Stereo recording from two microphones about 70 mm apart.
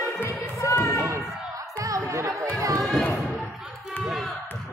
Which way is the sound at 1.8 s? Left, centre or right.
Right.